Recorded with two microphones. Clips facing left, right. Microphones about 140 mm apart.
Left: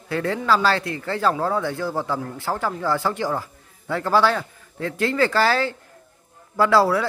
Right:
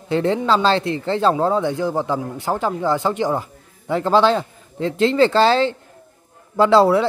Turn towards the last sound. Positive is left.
turn(degrees=-20)  # may be behind; listen again after turning